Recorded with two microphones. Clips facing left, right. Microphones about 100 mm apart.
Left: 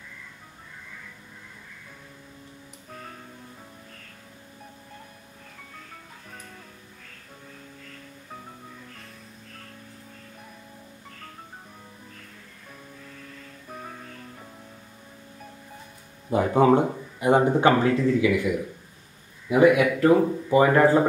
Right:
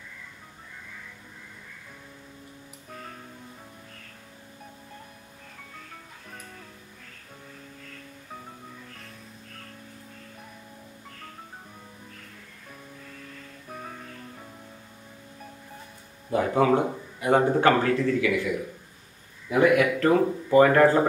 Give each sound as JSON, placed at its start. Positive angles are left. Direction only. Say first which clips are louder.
{"t": 13.7, "sound": "music", "louder": "even", "side_deg": 0}
{"t": 16.3, "sound": "a man's voice", "louder": "left 3 dB", "side_deg": 25}
{"t": 19.5, "sound": "speech", "louder": "left 2 dB", "side_deg": 15}